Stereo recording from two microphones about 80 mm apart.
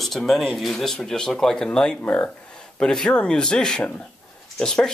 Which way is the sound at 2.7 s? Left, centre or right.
Centre.